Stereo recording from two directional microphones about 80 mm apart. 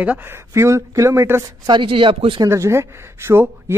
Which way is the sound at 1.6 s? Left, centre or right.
Right.